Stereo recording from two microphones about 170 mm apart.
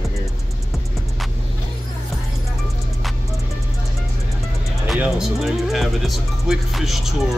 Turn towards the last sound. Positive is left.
turn(degrees=0)  # may be behind; listen again after turning